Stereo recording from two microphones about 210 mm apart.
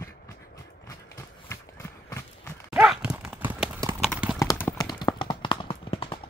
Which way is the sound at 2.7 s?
5° right (ahead or behind).